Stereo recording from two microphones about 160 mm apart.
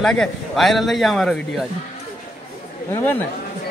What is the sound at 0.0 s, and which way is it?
A man's voice, 5° left (ahead or behind).